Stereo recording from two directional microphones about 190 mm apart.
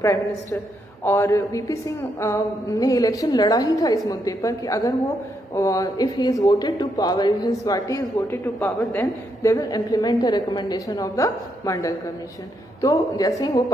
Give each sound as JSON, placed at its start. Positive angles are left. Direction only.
{"t": 1.0, "sound": "a woman's voice", "side_deg": 15}